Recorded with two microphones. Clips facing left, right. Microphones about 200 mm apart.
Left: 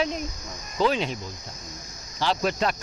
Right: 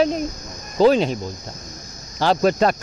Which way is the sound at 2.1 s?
45° right (ahead or behind).